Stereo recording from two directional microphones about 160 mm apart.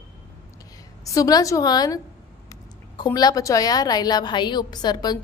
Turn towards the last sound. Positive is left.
turn(degrees=25)  # may be behind; listen again after turning